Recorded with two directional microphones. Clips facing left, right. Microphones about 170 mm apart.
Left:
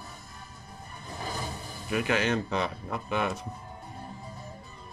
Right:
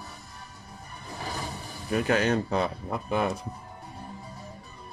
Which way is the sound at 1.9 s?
40° right (ahead or behind).